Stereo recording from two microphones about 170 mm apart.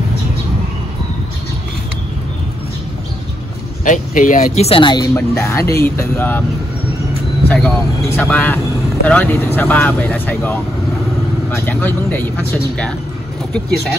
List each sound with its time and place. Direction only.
3.8 s speech: 50° left (ahead or behind); by 5.0 s 30° left (ahead or behind)
5.1 s speech: 15° left (ahead or behind)
7.4 s speech: 10° left (ahead or behind)